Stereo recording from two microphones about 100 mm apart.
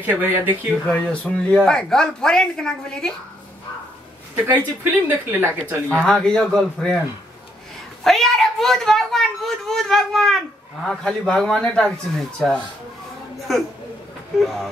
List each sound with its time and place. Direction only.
0.0 s speech: 20° right (ahead or behind)
0.8 s a man's voice: 10° left (ahead or behind)
4.5 s speech: 20° right (ahead or behind)
6.0 s a man's voice: 5° left (ahead or behind)
8.0 s a woman's voice: centre (ahead or behind)